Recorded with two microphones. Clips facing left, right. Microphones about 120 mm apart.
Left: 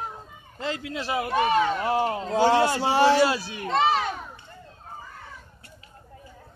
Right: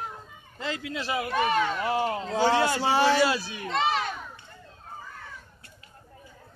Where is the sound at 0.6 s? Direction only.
35° left (ahead or behind).